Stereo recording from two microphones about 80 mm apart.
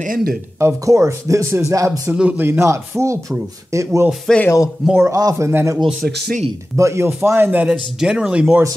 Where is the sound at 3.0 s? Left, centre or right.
Right.